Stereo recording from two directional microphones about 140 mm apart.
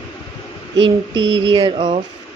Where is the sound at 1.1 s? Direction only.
30° right (ahead or behind).